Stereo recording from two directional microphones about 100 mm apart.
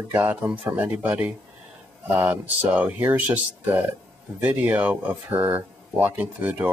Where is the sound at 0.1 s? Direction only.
20° right (ahead or behind).